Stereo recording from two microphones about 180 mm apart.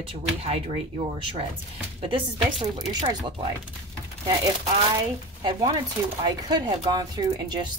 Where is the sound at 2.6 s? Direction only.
20° right (ahead or behind).